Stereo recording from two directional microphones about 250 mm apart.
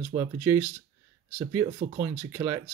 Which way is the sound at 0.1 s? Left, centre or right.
Centre.